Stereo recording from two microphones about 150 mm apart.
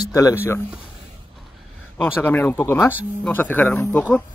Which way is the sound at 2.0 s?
15° left (ahead or behind).